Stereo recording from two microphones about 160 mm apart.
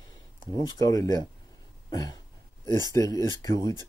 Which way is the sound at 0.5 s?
20° left (ahead or behind).